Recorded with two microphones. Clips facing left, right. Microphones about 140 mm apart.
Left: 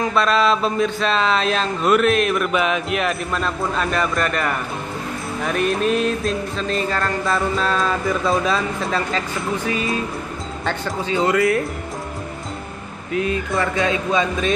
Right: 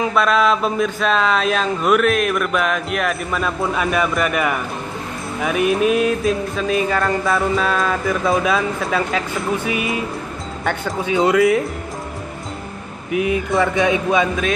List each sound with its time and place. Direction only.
0.0 s speech: 5° right (ahead or behind)
13.1 s speech: 15° right (ahead or behind)